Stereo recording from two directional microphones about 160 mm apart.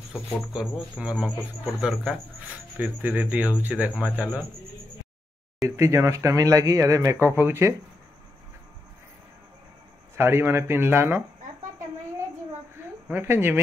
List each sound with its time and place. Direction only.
0.1 s speech: 5° right (ahead or behind)
5.8 s speech: 20° right (ahead or behind)
10.1 s speech: 15° right (ahead or behind)
13.1 s speech: 15° right (ahead or behind)